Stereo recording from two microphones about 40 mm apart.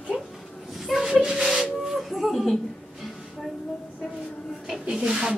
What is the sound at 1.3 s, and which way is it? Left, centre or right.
Rub, centre.